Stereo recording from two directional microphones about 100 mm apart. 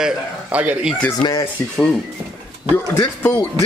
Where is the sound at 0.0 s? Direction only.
15° right (ahead or behind).